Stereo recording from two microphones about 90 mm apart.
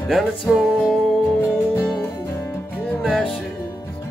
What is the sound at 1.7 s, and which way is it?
Music, 25° left (ahead or behind).